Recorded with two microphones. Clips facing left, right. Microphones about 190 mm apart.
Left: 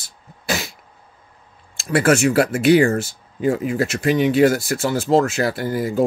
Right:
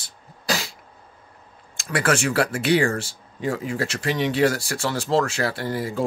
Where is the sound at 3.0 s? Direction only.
30° right (ahead or behind).